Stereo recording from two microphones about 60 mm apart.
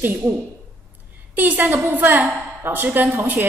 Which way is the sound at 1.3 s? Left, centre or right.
Right.